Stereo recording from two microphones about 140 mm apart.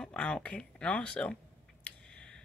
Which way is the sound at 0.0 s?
5° left (ahead or behind).